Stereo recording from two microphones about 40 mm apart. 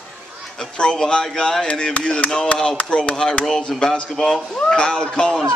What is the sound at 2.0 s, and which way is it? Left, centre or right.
Chop, left.